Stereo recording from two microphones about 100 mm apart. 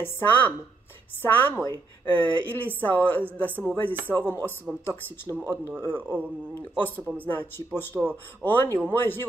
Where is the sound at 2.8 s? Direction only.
20° left (ahead or behind).